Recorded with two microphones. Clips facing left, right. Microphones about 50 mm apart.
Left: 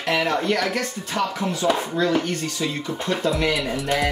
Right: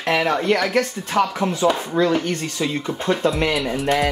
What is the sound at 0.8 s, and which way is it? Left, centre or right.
Speech, right.